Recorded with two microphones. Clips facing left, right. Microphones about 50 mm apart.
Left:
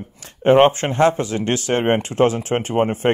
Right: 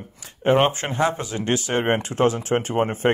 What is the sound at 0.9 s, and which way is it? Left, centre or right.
Speech, left.